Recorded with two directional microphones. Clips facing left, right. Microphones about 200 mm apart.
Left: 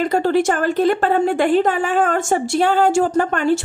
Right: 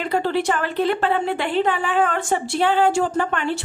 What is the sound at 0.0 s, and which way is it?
A woman's voice, 45° left (ahead or behind).